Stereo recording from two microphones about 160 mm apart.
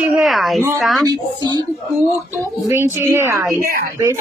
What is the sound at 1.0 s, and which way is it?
Speech, 25° right (ahead or behind).